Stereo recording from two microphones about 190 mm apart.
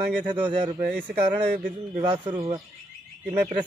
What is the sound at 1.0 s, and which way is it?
Speech, 10° right (ahead or behind).